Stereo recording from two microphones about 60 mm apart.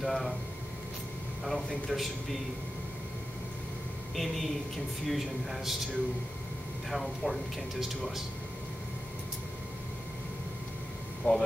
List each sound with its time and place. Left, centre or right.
0.0 s speech: centre
1.4 s a man's voice: centre
4.1 s a man's voice: centre
6.9 s a man's voice: centre
11.3 s speech: left